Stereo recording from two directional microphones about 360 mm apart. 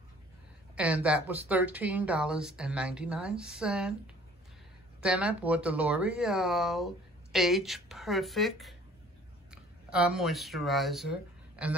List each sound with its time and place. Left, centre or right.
0.7 s speech: centre
5.0 s speech: centre